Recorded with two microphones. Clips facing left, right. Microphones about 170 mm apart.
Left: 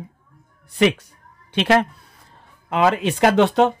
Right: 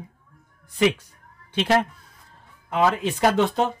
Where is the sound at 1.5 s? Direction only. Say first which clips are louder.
Left 3 dB; 75° left (ahead or behind).